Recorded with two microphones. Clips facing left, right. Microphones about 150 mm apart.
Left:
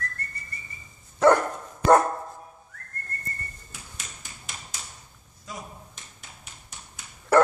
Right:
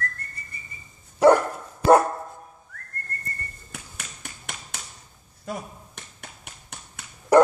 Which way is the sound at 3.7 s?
65° right (ahead or behind).